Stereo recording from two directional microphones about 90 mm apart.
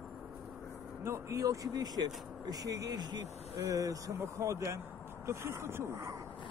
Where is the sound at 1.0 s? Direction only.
35° right (ahead or behind).